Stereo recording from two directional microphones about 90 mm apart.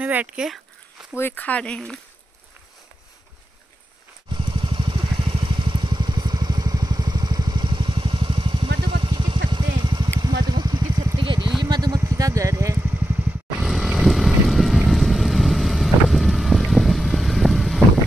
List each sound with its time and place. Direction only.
0.0 s speech: 20° right (ahead or behind)
1.1 s speech: 25° left (ahead or behind)
4.3 s vehicle: 70° right (ahead or behind); by 11.1 s 50° right (ahead or behind)
11.1 s vehicle: 65° right (ahead or behind); by 12.0 s 45° right (ahead or behind)
12.0 s speech: 40° right (ahead or behind)
13.6 s vehicle: centre (ahead or behind)